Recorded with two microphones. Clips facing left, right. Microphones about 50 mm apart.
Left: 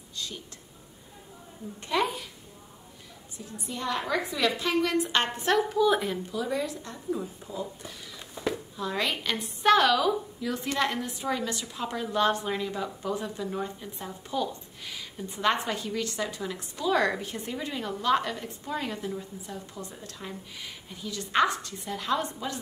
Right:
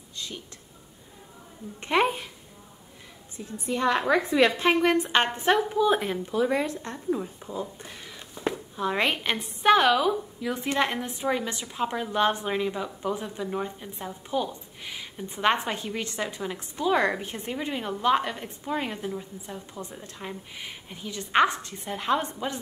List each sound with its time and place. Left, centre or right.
0.1 s a sound: right
1.8 s speech: right
3.6 s a woman's voice: right
5.9 s a woman's voice: right